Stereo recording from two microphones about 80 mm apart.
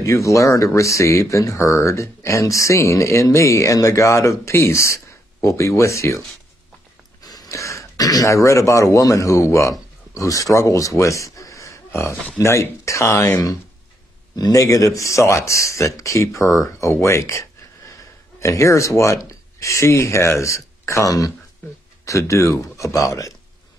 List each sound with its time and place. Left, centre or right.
0.0 s speech: left
7.2 s a sound: left
7.4 s speech: left
14.3 s speech: left
17.0 s a sound: left
18.4 s speech: left